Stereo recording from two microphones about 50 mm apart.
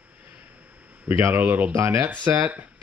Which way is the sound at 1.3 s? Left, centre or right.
Right.